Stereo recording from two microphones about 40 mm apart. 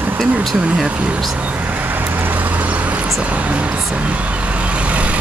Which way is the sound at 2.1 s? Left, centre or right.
Right.